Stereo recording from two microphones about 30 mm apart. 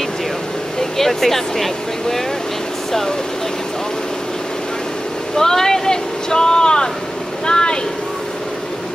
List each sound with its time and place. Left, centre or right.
0.7 s speech: centre
5.3 s speech: centre
7.4 s vehicle: left